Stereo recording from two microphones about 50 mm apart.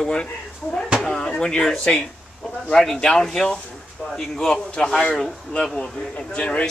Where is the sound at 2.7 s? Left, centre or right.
Centre.